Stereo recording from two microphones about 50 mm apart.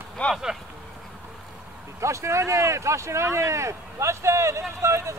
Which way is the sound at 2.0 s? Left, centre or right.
Right.